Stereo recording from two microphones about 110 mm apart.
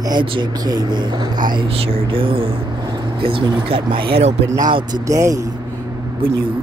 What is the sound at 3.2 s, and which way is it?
Speech, 50° right (ahead or behind).